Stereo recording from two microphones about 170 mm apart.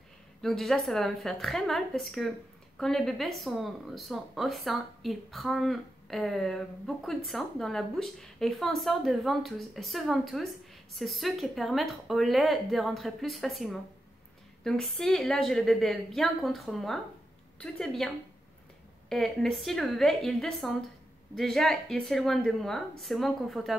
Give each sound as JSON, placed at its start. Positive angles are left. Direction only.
{"t": 0.4, "sound": "speech", "side_deg": 0}